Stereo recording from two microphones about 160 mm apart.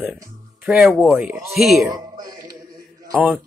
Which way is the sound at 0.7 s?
5° right (ahead or behind).